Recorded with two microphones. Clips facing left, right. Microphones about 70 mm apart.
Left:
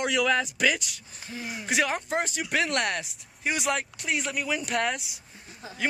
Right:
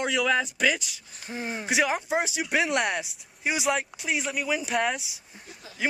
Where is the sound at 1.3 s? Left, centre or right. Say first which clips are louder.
Right 4 dB; right.